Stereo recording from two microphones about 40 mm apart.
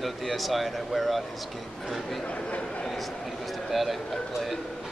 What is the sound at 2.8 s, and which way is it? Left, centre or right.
A man's voice, centre.